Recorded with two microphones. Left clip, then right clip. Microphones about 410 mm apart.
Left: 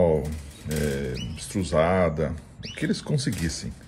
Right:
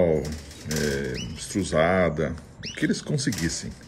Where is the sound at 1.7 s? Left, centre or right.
Left.